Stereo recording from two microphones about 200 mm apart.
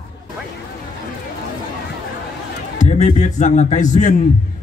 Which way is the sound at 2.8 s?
35° left (ahead or behind).